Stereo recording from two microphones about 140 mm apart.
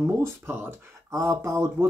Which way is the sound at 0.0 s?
15° right (ahead or behind).